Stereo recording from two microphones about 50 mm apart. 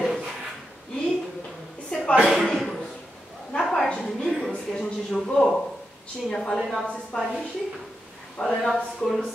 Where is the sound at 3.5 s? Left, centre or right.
Centre.